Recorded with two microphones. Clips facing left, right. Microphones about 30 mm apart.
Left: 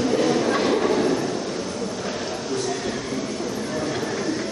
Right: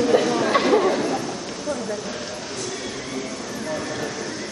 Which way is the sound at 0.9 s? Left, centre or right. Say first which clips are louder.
Left 2 dB; centre.